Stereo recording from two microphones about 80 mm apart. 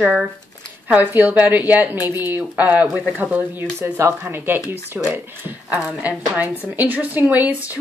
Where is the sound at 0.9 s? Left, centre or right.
Right.